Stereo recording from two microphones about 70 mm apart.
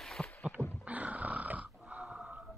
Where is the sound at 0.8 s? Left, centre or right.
Right.